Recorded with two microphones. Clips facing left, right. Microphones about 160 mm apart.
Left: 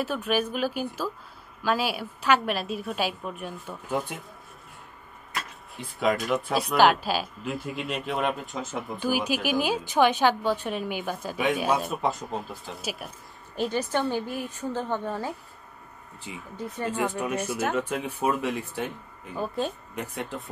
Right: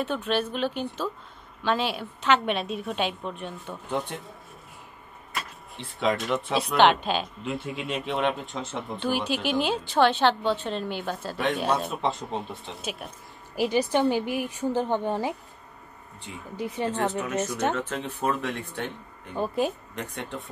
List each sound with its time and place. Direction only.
0.0 s speech: 5° left (ahead or behind)
5.3 s speech: centre (ahead or behind)
13.6 s a woman's voice: 15° right (ahead or behind)
16.5 s speech: 90° right
16.9 s speech: 10° left (ahead or behind)